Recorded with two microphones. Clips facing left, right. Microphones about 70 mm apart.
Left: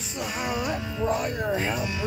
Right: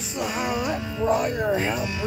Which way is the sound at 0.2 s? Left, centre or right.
Right.